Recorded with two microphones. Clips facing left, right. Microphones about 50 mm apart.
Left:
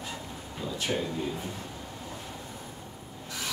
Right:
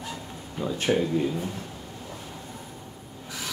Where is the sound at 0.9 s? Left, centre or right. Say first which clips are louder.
Right 7 dB; right.